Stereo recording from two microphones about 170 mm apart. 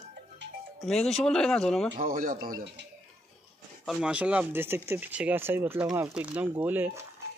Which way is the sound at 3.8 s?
Centre (ahead or behind).